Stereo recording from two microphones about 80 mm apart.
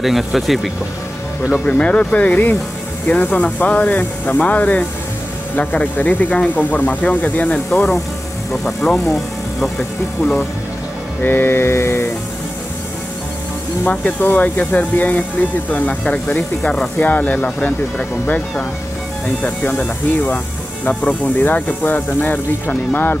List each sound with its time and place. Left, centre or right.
0.0 s speech: centre
1.7 s speech: centre
7.7 s speech: centre
11.2 s a sound: left
13.8 s speech: left